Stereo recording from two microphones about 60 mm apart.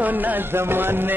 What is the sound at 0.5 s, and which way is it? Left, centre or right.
Music, right.